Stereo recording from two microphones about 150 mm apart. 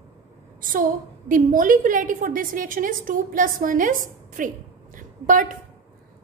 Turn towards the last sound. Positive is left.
turn(degrees=-60)  # may be behind; listen again after turning